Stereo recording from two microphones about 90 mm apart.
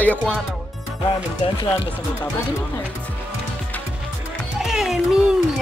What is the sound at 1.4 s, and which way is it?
Speech, 90° left.